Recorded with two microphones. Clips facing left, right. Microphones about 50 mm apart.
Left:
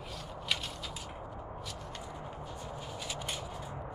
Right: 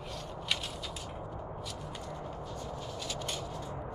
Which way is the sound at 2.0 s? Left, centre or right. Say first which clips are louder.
Right 2 dB; centre.